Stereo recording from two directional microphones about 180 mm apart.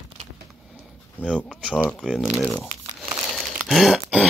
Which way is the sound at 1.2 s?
5° right (ahead or behind).